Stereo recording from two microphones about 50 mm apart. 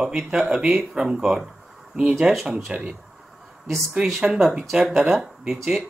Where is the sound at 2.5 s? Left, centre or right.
Centre.